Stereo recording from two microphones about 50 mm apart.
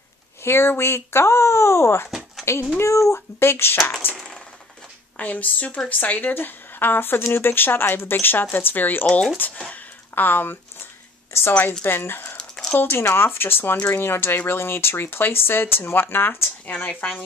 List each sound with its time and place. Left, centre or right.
0.4 s speech: left
2.0 s a sound: centre
2.8 s speech: left
3.4 s speech: left
5.1 s speech: left
6.3 s speech: left
11.8 s speech: left
12.4 s a sound: centre
12.7 s speech: left
16.6 s speech: left